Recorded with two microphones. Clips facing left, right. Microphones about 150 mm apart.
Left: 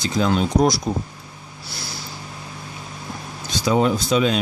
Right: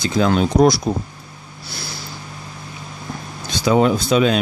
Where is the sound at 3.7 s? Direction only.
75° right (ahead or behind).